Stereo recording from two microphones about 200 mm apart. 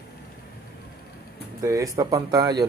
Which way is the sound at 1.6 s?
15° right (ahead or behind).